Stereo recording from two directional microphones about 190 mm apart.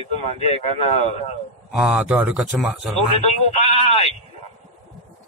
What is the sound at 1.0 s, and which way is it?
Speech, 35° left (ahead or behind).